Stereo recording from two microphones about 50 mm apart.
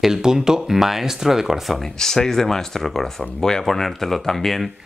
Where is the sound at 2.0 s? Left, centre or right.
Centre.